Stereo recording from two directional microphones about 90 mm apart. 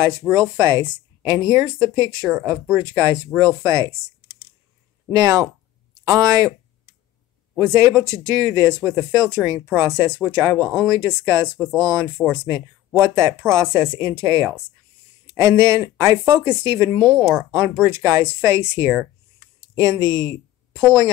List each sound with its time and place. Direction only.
0.3 s speech: 40° right (ahead or behind)
2.6 s speech: 35° right (ahead or behind)
5.1 s speech: 45° right (ahead or behind)
7.5 s speech: 30° right (ahead or behind)
17.8 s speech: 35° right (ahead or behind)
19.7 s speech: 50° right (ahead or behind)